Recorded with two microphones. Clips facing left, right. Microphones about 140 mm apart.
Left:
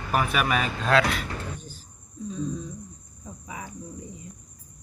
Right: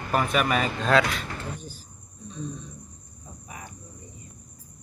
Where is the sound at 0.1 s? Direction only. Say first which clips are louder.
Right 1 dB; 5° left (ahead or behind).